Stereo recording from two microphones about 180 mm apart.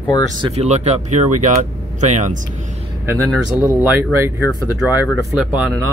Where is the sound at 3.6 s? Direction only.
15° right (ahead or behind).